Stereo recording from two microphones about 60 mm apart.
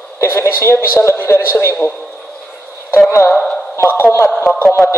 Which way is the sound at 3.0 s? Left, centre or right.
Left.